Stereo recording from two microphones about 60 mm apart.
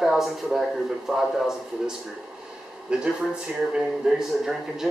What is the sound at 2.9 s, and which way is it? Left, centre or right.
Speech, centre.